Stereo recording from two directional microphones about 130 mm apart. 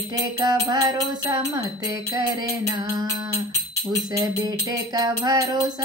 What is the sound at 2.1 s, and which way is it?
Music, 30° right (ahead or behind).